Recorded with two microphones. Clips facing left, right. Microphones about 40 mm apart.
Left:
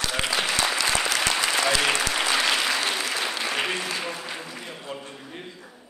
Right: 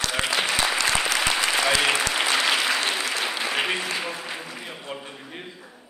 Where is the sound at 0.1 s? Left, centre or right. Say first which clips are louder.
Right 1 dB; centre.